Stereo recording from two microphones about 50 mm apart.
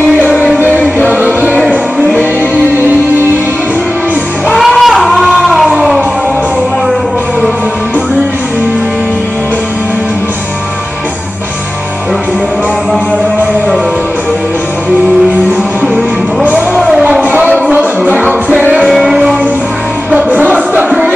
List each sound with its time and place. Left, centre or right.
0.2 s music: right
4.6 s child singing: centre
5.4 s a sound: centre
16.4 s a sound: right
18.0 s music: right
18.9 s music: centre
20.2 s music: right